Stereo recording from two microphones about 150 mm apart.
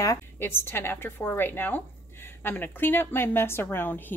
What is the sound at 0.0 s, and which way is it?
A woman's voice, 20° left (ahead or behind).